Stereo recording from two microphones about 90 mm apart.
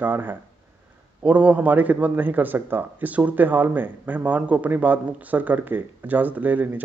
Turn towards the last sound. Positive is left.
turn(degrees=-20)  # may be behind; listen again after turning